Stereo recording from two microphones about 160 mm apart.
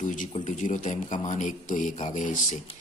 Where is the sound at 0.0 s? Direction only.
55° left (ahead or behind).